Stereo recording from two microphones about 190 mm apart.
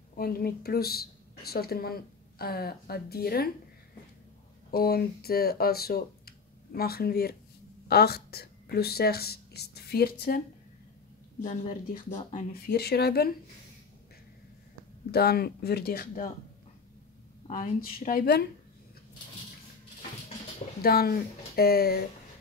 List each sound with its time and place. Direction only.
0.1 s a woman's voice: 50° left (ahead or behind)
4.6 s speech: 55° left (ahead or behind)
11.4 s speech: 40° left (ahead or behind)
12.6 s speech: 55° left (ahead or behind)
15.0 s speech: 55° left (ahead or behind)
17.5 s speech: 45° left (ahead or behind)
20.8 s speech: 55° left (ahead or behind)